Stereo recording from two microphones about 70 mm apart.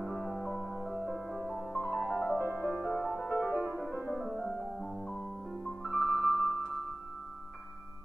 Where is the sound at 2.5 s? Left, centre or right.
Right; by 6.6 s centre.